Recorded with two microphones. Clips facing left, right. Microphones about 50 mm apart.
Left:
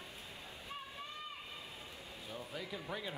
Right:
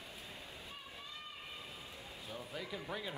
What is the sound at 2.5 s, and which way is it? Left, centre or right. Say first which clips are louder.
Speech: even; centre.